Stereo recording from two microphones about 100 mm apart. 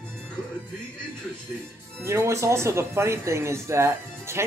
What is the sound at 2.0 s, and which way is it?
Speech, 30° right (ahead or behind).